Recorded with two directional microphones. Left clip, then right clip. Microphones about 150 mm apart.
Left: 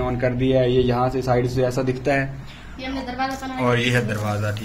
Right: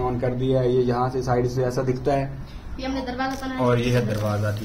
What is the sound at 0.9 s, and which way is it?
Speech, 30° left (ahead or behind).